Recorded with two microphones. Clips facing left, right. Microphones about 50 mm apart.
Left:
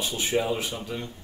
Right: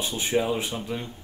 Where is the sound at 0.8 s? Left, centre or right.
Centre.